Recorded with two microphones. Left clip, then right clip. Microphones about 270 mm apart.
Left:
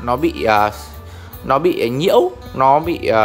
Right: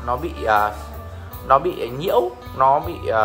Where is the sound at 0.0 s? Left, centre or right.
Left.